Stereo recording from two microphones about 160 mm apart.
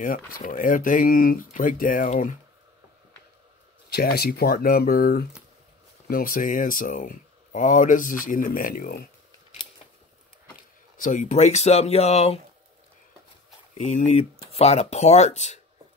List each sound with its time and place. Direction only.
0.0 s speech: 60° left (ahead or behind)
3.9 s speech: 80° left; by 9.0 s 60° left (ahead or behind)
11.0 s speech: 50° left (ahead or behind)
13.7 s speech: 50° left (ahead or behind)